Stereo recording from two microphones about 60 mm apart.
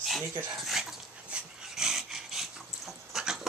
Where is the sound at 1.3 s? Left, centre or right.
Centre.